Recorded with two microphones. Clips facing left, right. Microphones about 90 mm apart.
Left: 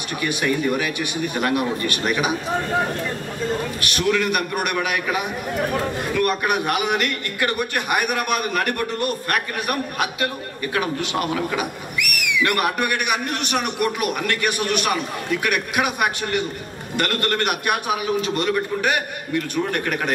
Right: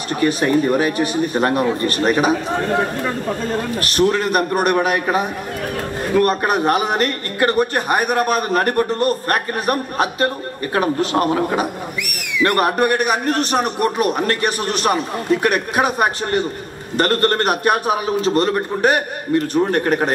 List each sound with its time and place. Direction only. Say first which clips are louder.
0.2 s a man's voice: right 6 dB; 35° right (ahead or behind)
3.8 s a man's voice: right 4 dB; 35° right (ahead or behind)
12.0 s a sound: left 2 dB; 65° left (ahead or behind)
12.4 s a man's voice: right 8 dB; 35° right (ahead or behind)